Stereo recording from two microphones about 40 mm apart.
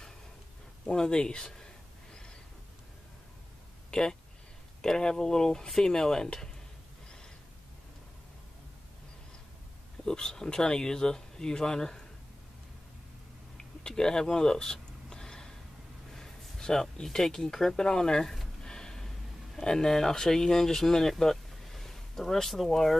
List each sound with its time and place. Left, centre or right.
0.8 s speech: centre
3.9 s speech: centre
5.7 s speech: centre
10.0 s speech: centre
13.8 s a sound: centre
16.1 s speech: centre
18.6 s gasp: centre
19.5 s speech: centre